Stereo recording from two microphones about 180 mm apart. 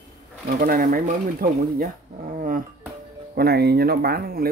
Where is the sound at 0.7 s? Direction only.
55° right (ahead or behind).